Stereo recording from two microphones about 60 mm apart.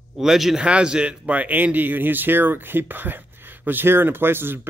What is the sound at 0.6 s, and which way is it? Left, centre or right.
Speech, centre.